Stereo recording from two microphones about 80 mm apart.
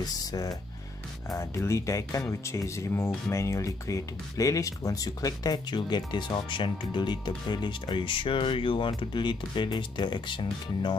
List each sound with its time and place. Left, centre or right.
0.3 s speech: left
1.3 s speech: left